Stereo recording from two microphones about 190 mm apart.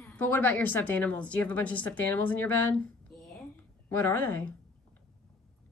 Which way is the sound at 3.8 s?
10° left (ahead or behind).